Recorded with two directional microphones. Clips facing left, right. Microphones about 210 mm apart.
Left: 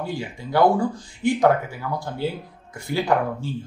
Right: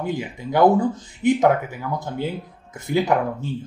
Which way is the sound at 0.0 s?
20° right (ahead or behind).